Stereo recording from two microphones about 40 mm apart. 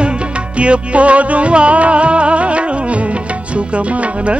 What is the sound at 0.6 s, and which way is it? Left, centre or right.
Music, right.